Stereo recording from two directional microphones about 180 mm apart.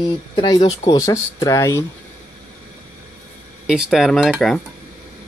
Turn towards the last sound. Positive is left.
turn(degrees=0)  # may be behind; listen again after turning